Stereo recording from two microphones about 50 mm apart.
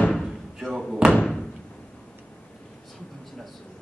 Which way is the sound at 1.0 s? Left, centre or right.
Right.